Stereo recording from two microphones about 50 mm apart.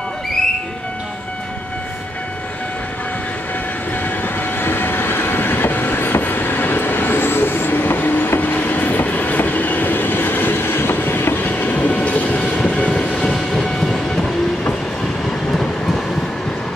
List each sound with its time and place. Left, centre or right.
4.2 s train: left
11.6 s train: left; by 14.3 s centre